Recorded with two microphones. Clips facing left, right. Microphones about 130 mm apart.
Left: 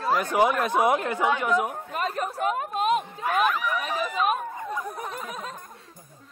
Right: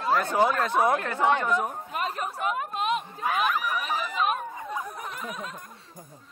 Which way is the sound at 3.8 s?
45° left (ahead or behind).